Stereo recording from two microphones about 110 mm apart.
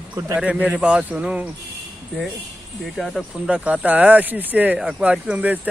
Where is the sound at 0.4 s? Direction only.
10° right (ahead or behind).